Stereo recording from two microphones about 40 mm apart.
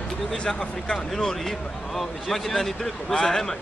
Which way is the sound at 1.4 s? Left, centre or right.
Centre.